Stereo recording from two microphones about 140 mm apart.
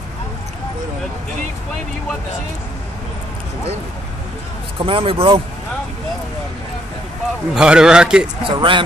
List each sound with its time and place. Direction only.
4.7 s speech: 40° right (ahead or behind)
7.5 s a man's voice: 5° right (ahead or behind)
8.5 s speech: 35° right (ahead or behind)